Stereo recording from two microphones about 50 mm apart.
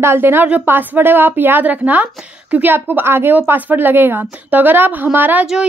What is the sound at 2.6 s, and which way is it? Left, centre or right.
A woman's voice, right.